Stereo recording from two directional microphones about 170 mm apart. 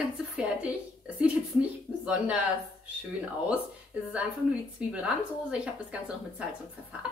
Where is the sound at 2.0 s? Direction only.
5° right (ahead or behind).